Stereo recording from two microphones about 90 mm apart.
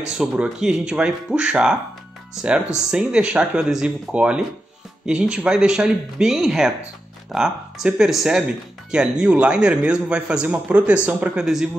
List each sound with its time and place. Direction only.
0.2 s speech: 10° right (ahead or behind)
11.4 s speech: 5° right (ahead or behind)